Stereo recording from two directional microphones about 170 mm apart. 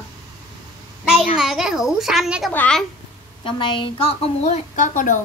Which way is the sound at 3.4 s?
30° left (ahead or behind).